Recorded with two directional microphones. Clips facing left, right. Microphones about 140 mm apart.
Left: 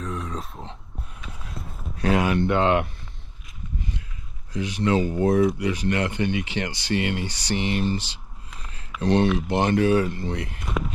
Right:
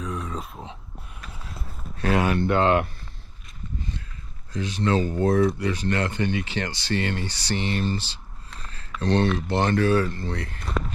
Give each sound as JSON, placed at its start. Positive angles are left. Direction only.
{"t": 0.0, "sound": "a sound", "side_deg": 0}
{"t": 2.0, "sound": "speech", "side_deg": 20}
{"t": 2.2, "sound": "speech", "side_deg": -35}
{"t": 2.6, "sound": "speech", "side_deg": 5}
{"t": 4.5, "sound": "speech", "side_deg": 15}